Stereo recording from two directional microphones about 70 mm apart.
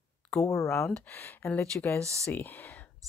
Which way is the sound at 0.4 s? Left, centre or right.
Left.